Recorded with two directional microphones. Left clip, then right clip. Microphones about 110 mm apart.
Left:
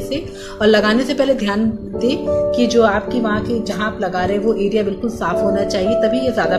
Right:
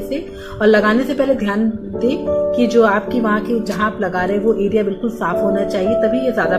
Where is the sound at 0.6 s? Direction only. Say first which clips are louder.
Right 1 dB; 5° right (ahead or behind).